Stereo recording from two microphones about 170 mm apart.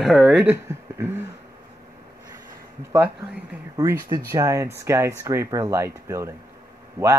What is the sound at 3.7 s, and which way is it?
Speech, 20° right (ahead or behind).